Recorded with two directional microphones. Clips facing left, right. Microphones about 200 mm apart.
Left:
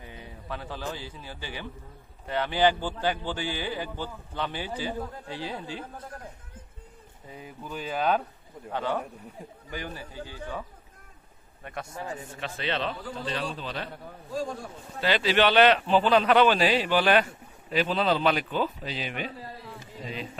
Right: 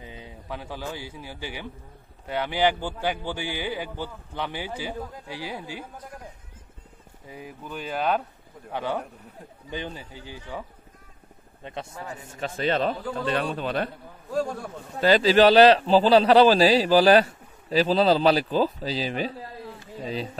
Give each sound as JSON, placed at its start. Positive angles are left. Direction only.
{"t": 0.0, "sound": "a man's voice", "side_deg": -15}
{"t": 7.2, "sound": "speech", "side_deg": -5}
{"t": 8.7, "sound": "a man's voice", "side_deg": -10}
{"t": 9.7, "sound": "speech", "side_deg": -25}
{"t": 11.6, "sound": "speech", "side_deg": -25}
{"t": 12.1, "sound": "a man's voice", "side_deg": 40}
{"t": 12.4, "sound": "a man's voice", "side_deg": -45}
{"t": 15.0, "sound": "a man's voice", "side_deg": -40}